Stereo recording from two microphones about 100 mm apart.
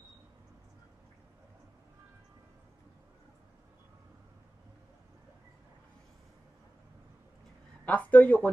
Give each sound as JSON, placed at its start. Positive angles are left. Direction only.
{"t": 7.8, "sound": "speech", "side_deg": 15}